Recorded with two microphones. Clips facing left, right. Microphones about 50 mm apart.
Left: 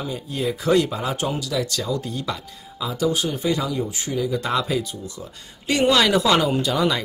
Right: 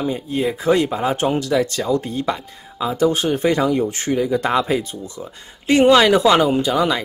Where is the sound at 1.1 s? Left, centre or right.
Right.